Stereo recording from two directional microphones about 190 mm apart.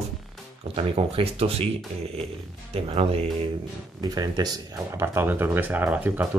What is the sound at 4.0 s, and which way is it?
Speech, 20° right (ahead or behind).